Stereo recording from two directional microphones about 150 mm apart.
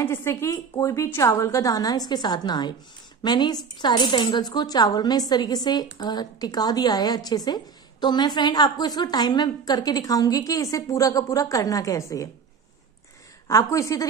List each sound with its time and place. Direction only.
0.0 s a woman's voice: 15° left (ahead or behind)
13.5 s a woman's voice: 20° left (ahead or behind)